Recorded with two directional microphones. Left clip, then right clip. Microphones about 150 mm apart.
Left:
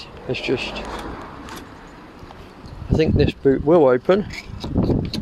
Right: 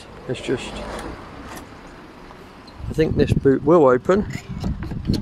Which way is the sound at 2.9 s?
15° right (ahead or behind).